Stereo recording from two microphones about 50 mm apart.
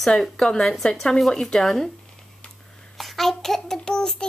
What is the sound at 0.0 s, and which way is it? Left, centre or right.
A child's voice, centre.